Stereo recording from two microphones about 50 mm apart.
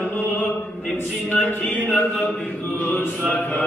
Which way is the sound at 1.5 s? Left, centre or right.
Left.